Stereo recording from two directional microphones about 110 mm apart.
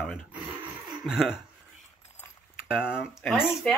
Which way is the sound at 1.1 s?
5° right (ahead or behind).